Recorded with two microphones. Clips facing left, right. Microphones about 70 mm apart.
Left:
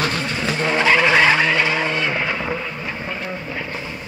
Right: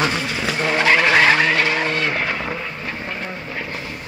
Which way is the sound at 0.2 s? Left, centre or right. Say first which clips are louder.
Even; centre.